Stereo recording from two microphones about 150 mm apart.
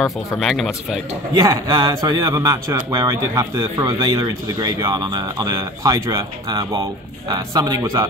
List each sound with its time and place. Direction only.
0.0 s speech: centre (ahead or behind)
1.3 s speech: 30° right (ahead or behind)
1.9 s speech: 20° right (ahead or behind)